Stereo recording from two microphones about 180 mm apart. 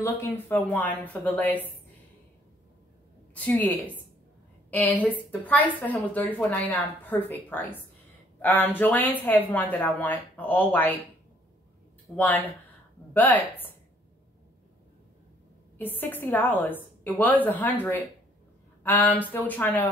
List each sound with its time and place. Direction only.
0.0 s a woman's voice: 10° left (ahead or behind)
3.3 s a woman's voice: 10° left (ahead or behind)
12.2 s a woman's voice: 10° left (ahead or behind)
15.8 s a woman's voice: 10° left (ahead or behind)
18.8 s a woman's voice: 10° left (ahead or behind)